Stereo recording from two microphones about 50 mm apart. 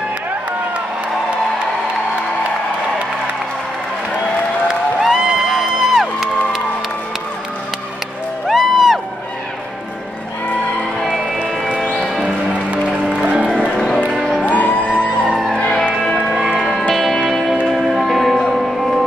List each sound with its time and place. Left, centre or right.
5.0 s music: centre
8.5 s music: centre
12.2 s music: right
14.5 s music: left
15.2 s music: centre
15.5 s music: centre
15.9 s music: centre